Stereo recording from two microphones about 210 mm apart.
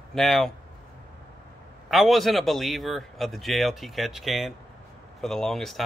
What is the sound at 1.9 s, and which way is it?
Speech, centre (ahead or behind).